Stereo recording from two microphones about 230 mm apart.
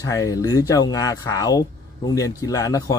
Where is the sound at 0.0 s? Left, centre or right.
Centre.